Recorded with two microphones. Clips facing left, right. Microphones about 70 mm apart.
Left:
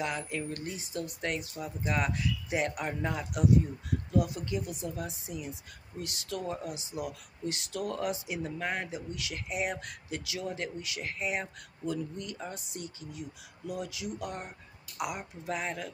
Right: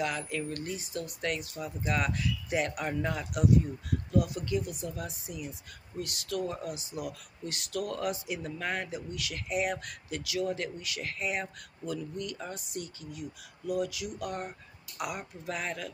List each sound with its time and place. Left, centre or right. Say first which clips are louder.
0.0 s speech: right 1 dB; left